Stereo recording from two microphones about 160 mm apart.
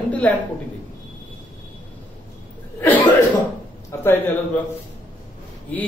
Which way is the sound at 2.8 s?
10° left (ahead or behind).